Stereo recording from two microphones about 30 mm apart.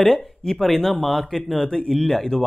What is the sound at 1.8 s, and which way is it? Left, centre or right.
Speech, centre.